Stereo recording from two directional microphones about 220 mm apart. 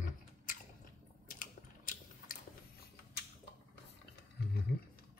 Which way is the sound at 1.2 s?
35° left (ahead or behind).